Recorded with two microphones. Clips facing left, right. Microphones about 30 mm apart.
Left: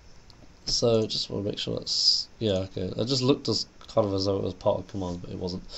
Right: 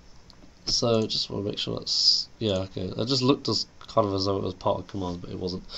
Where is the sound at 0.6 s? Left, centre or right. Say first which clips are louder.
Even; centre.